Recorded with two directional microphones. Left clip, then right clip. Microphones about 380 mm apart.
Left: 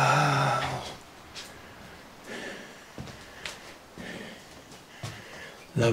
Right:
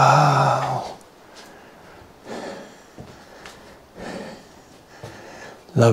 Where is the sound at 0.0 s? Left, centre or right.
Right.